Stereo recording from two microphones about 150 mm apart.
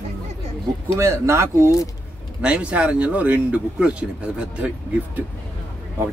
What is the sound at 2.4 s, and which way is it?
Speech, 5° right (ahead or behind).